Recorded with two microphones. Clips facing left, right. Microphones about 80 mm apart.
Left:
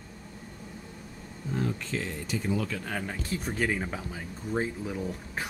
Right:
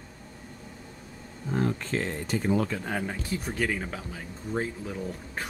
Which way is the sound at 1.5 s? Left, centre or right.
Right.